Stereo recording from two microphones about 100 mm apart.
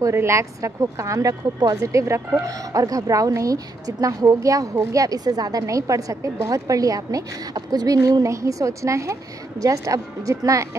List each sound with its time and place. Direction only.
0.0 s a woman's voice: 30° right (ahead or behind)